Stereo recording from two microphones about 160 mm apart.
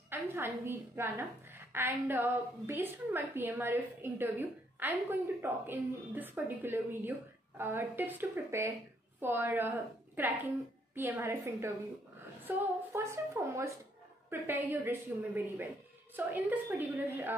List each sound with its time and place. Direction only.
0.1 s a woman's voice: 15° right (ahead or behind)